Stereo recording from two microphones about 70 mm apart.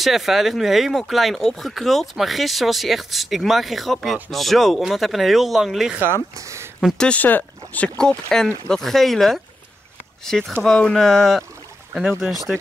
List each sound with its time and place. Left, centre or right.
0.0 s speech: centre
6.3 s speech: right
7.0 s speech: centre
8.3 s speech: centre